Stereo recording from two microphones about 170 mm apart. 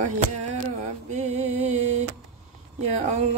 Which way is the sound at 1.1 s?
40° right (ahead or behind).